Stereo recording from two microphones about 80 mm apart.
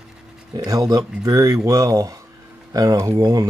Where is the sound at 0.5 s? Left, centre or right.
Right.